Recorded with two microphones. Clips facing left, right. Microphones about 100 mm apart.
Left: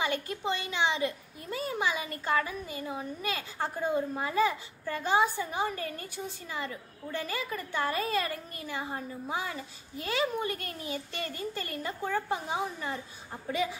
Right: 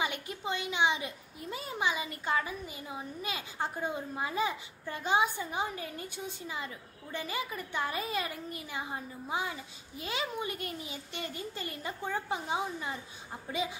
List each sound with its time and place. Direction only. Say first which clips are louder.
0.0 s a child's voice: left 4 dB; 15° right (ahead or behind)